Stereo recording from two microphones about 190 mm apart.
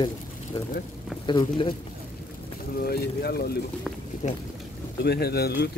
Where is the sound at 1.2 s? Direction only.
25° left (ahead or behind).